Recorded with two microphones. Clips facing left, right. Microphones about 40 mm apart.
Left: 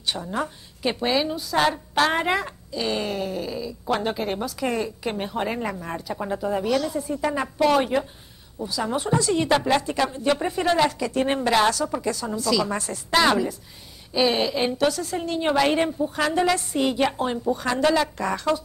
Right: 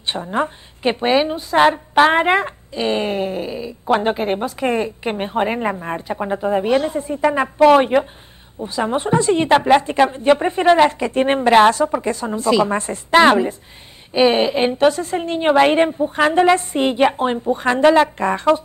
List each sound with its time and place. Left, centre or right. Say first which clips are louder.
0.0 s a woman's voice: right 6 dB; right